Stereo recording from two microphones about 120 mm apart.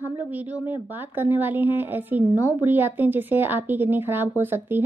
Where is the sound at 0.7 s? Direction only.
15° right (ahead or behind).